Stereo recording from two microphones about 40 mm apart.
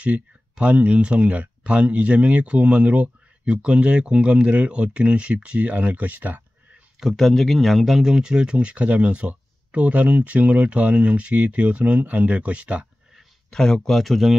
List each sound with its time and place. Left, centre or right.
0.0 s speech: right
7.2 s speech: centre
8.1 s speech: centre
13.5 s speech: centre